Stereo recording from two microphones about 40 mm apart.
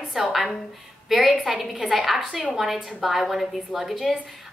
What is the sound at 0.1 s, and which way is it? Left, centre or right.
A woman's voice, centre.